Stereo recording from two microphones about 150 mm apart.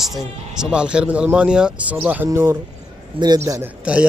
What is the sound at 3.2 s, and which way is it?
Speech, 35° right (ahead or behind).